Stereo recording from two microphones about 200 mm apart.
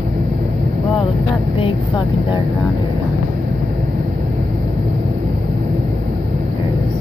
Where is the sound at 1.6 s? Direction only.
25° left (ahead or behind).